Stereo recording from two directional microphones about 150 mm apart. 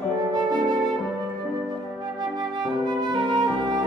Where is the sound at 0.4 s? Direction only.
30° right (ahead or behind).